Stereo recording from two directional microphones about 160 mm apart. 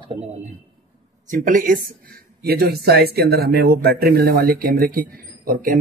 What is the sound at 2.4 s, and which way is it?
Speech, 75° right (ahead or behind).